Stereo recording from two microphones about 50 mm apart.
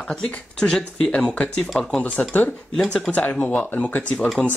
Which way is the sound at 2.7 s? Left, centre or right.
Centre.